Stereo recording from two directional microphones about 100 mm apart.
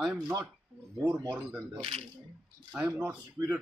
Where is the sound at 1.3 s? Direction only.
10° right (ahead or behind).